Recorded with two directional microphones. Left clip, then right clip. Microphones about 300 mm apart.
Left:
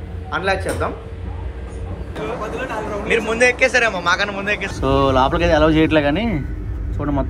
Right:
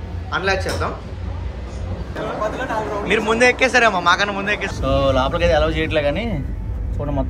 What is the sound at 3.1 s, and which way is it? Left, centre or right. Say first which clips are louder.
A man's voice: even; centre.